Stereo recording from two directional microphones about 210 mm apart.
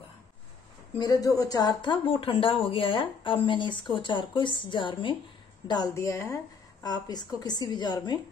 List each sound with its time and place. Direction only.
0.9 s speech: 20° left (ahead or behind)